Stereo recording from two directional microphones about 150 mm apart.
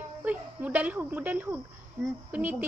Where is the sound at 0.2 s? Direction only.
10° right (ahead or behind).